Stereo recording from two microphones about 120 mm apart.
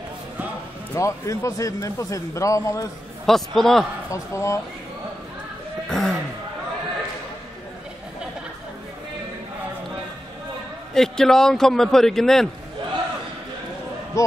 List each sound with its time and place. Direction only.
0.9 s a man's voice: 25° left (ahead or behind)
3.3 s a man's voice: centre (ahead or behind)
4.1 s a man's voice: 25° left (ahead or behind)
5.9 s a sound: 5° left (ahead or behind)
11.0 s a man's voice: 5° left (ahead or behind)
14.2 s a man's voice: 30° left (ahead or behind)